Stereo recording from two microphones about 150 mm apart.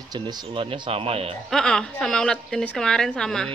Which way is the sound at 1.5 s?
5° left (ahead or behind).